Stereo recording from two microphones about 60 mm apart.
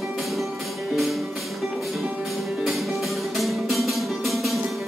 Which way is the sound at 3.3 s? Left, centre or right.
Centre.